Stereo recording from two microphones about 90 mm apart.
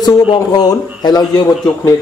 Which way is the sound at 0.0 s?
50° left (ahead or behind).